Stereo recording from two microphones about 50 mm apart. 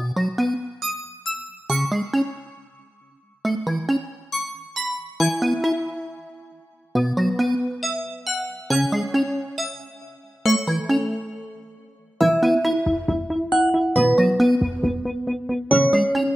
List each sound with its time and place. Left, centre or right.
0.0 s music: centre
3.4 s music: centre
6.9 s music: centre
12.2 s music: centre